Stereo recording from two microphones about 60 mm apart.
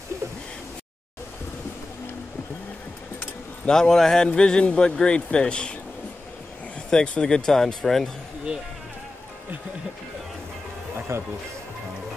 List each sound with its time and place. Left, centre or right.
3.6 s speech: centre
6.9 s speech: centre
11.1 s speech: right